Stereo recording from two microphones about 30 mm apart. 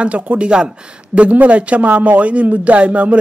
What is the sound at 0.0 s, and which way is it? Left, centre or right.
Speech, right.